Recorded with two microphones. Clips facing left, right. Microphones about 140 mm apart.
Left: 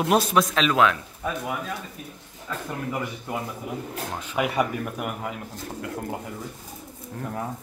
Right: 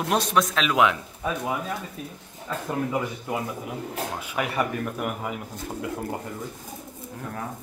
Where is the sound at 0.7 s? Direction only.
15° right (ahead or behind).